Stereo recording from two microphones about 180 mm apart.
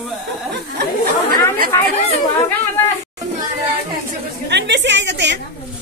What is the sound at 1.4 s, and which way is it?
Speech, 15° left (ahead or behind).